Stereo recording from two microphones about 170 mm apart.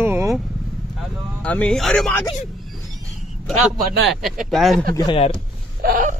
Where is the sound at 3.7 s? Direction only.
55° right (ahead or behind).